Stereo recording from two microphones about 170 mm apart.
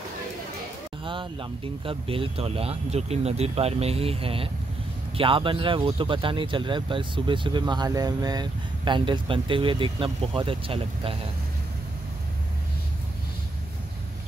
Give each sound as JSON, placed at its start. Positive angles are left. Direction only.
{"t": 1.0, "sound": "speech", "side_deg": -30}